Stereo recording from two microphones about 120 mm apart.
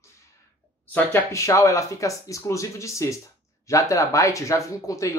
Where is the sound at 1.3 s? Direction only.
25° left (ahead or behind).